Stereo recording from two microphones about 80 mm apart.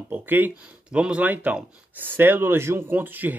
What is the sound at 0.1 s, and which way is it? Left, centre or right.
Speech, right.